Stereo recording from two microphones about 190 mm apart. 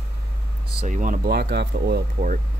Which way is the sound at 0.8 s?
40° right (ahead or behind).